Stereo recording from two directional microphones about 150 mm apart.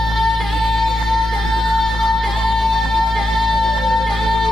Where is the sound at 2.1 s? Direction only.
Centre (ahead or behind).